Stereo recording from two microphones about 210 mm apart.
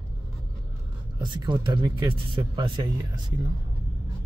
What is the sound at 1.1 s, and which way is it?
Speech, 20° right (ahead or behind).